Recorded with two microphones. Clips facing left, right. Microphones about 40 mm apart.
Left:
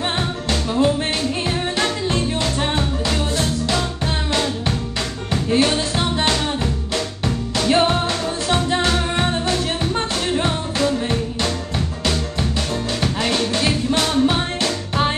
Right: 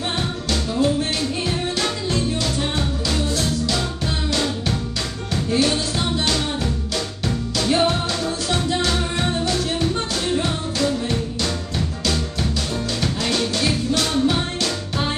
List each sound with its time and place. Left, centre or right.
0.5 s music: left
13.0 s music: left